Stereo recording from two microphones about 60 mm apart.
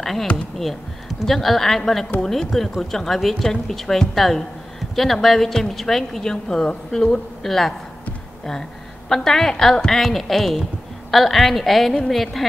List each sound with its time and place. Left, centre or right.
0.0 s a woman's voice: centre
9.1 s a woman's voice: centre